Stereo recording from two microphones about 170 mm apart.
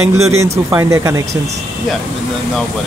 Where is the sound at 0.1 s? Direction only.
15° right (ahead or behind).